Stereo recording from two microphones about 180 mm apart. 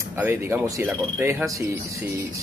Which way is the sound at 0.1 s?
10° right (ahead or behind).